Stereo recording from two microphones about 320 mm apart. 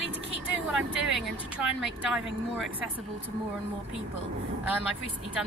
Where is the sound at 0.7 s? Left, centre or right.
Centre.